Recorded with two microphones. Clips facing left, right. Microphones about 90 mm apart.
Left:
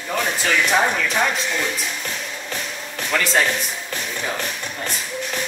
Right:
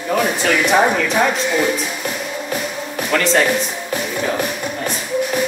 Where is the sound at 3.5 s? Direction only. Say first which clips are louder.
Right 6 dB; 15° right (ahead or behind).